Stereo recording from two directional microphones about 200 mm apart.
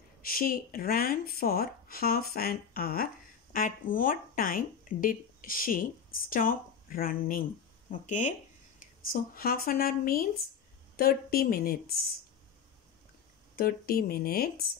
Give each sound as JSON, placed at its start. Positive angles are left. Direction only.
{"t": 0.2, "sound": "speech", "side_deg": 45}
{"t": 13.6, "sound": "speech", "side_deg": 50}